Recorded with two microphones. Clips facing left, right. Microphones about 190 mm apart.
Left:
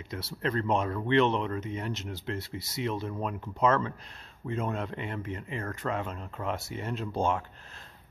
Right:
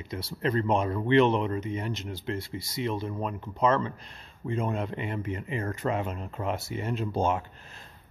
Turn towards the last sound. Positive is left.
turn(degrees=-5)  # may be behind; listen again after turning